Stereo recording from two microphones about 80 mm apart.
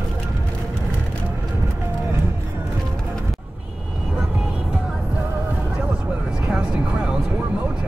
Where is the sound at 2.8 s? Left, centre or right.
Centre.